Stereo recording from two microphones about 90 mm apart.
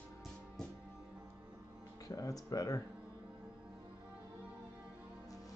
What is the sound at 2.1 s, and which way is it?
Speech, 40° left (ahead or behind).